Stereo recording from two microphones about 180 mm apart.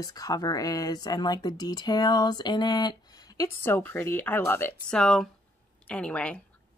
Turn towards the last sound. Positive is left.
turn(degrees=5)  # may be behind; listen again after turning